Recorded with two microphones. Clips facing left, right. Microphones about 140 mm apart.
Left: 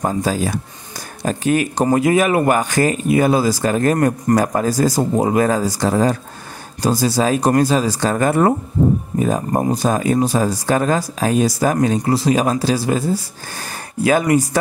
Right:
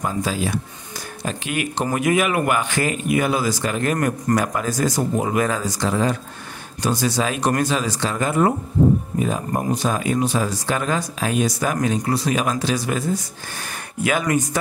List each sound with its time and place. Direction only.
0.0 s speech: 40° left (ahead or behind)
9.2 s speech: 35° left (ahead or behind)